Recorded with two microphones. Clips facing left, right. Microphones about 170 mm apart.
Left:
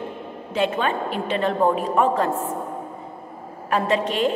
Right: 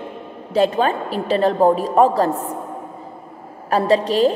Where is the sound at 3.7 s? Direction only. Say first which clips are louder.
Right 5 dB; 35° right (ahead or behind).